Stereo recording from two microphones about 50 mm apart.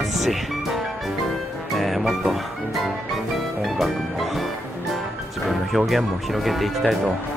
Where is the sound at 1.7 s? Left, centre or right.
Centre.